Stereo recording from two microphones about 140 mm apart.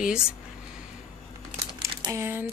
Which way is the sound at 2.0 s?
20° right (ahead or behind).